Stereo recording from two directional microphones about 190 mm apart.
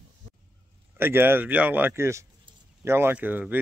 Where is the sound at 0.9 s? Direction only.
10° right (ahead or behind).